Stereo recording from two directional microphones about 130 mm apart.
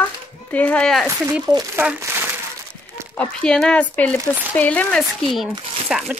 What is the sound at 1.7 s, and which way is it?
Speech, 20° right (ahead or behind).